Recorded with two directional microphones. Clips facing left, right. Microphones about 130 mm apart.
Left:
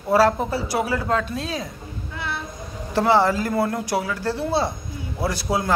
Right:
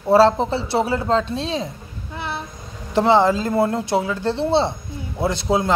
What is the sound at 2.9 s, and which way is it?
Speech, 20° right (ahead or behind).